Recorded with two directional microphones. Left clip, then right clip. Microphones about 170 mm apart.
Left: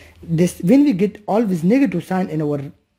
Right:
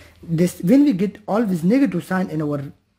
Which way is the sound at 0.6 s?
15° left (ahead or behind).